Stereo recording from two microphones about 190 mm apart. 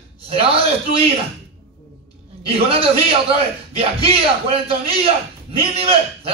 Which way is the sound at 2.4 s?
30° right (ahead or behind).